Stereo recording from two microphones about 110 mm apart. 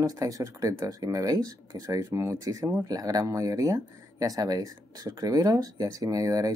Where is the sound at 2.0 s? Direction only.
25° right (ahead or behind).